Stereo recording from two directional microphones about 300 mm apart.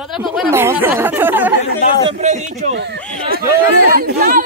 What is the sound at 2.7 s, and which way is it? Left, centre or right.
Speech, right.